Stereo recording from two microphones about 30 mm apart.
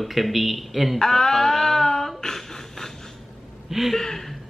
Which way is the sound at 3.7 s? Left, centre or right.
Centre.